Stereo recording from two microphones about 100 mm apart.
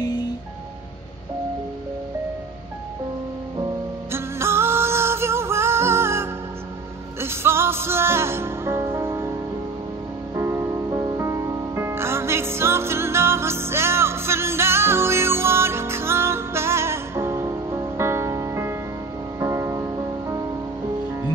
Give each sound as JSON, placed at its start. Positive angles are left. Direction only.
{"t": 4.1, "sound": "music", "side_deg": -25}
{"t": 10.3, "sound": "music", "side_deg": -30}